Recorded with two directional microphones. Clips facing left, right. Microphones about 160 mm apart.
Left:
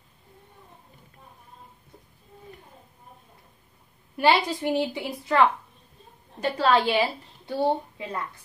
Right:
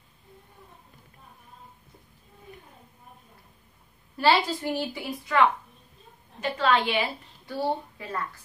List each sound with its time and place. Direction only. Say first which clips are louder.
4.2 s a woman's voice: left 1 dB; 20° left (ahead or behind)
6.4 s a woman's voice: left 2 dB; 35° left (ahead or behind)